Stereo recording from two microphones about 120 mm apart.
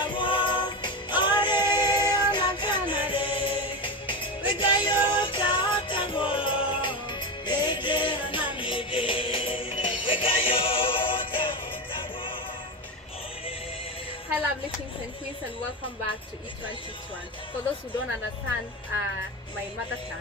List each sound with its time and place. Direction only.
0.0 s music: 45° left (ahead or behind)